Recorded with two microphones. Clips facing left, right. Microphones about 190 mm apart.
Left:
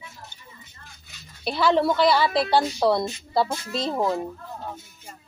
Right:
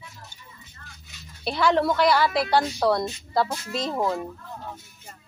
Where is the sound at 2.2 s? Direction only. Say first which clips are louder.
Left 1 dB; 25° left (ahead or behind).